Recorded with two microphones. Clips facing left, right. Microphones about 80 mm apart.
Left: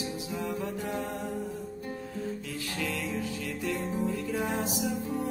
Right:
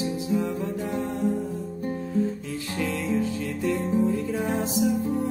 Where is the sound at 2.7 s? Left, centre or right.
Right.